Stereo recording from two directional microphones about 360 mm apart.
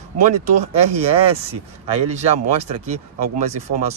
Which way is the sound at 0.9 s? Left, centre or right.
Centre.